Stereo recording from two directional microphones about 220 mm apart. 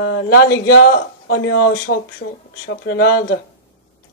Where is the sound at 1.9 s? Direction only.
60° left (ahead or behind).